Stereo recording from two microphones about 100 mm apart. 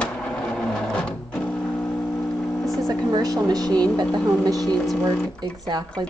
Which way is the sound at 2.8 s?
40° right (ahead or behind).